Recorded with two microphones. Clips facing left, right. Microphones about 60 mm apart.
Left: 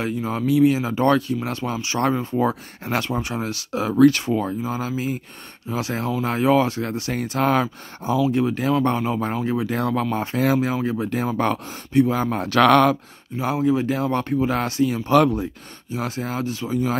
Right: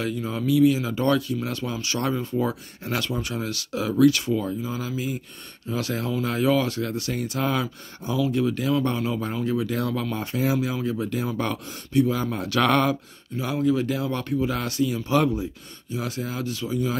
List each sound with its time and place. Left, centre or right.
0.0 s speech: left
2.0 s speech: left
7.3 s speech: left
7.6 s speech: left
10.3 s speech: left
12.5 s speech: left
13.3 s speech: centre
13.7 s speech: left
15.0 s speech: left
15.9 s speech: left